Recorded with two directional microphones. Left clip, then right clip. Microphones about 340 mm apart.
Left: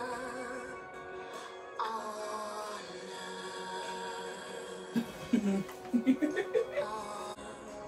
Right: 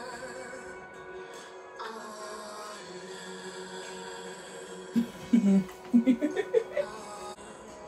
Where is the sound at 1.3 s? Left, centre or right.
Centre.